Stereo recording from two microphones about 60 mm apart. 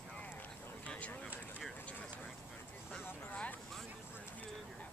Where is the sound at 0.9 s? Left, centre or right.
Left.